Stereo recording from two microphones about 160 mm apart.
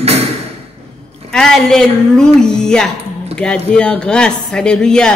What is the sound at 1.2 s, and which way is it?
A woman's voice, 5° left (ahead or behind).